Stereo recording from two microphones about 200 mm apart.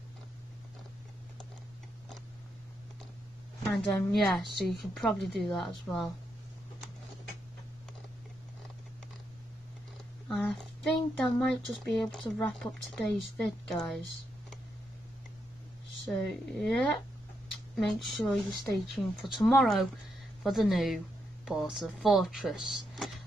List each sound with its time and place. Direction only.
3.7 s speech: 5° left (ahead or behind)
10.2 s speech: 5° left (ahead or behind)
16.1 s speech: centre (ahead or behind)